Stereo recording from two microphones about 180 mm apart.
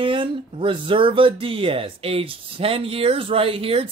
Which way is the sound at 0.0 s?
30° right (ahead or behind).